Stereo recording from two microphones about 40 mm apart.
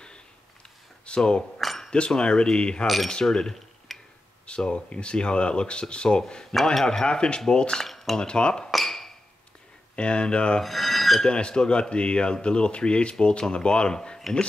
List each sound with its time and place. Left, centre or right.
1.0 s speech: left
1.6 s a sound: centre
1.9 s speech: left
3.9 s a sound: centre
4.5 s speech: left
7.8 s cutlery: centre
8.2 s speech: left
8.7 s a sound: centre
9.9 s speech: left
10.6 s filing: centre
11.2 s speech: left